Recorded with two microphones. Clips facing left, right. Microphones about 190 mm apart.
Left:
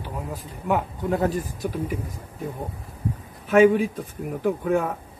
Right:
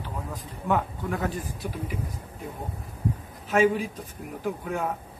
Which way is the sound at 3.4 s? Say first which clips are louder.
Left 6 dB; 55° left (ahead or behind).